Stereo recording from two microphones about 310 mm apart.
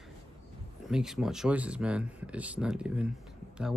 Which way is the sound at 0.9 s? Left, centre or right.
Centre.